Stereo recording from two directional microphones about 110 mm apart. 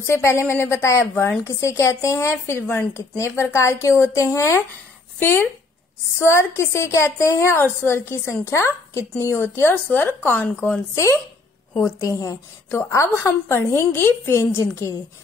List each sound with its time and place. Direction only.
0.0 s a woman's voice: 25° left (ahead or behind)